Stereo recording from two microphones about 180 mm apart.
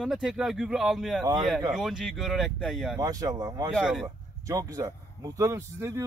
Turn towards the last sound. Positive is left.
turn(degrees=-15)  # may be behind; listen again after turning